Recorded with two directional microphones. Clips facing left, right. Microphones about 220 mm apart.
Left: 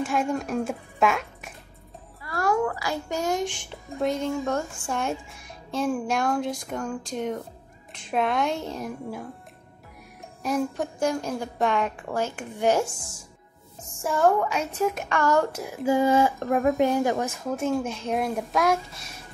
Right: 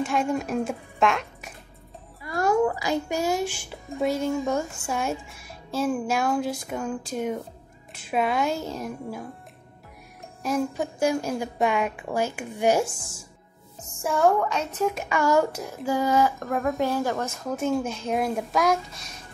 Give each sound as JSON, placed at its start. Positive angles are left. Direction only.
{"t": 0.0, "sound": "a woman's voice", "side_deg": 0}
{"t": 2.2, "sound": "a sound", "side_deg": -20}
{"t": 3.2, "sound": "speech", "side_deg": -5}
{"t": 10.4, "sound": "a woman's voice", "side_deg": 0}
{"t": 14.0, "sound": "speech", "side_deg": 0}
{"t": 15.0, "sound": "a woman's voice", "side_deg": -10}
{"t": 15.8, "sound": "speech", "side_deg": 20}
{"t": 17.5, "sound": "speech", "side_deg": 0}